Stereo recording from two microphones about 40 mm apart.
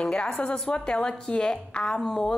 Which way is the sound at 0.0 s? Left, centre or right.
Left.